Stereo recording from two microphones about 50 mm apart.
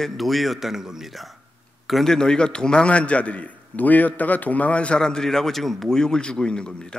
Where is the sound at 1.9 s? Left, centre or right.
Centre.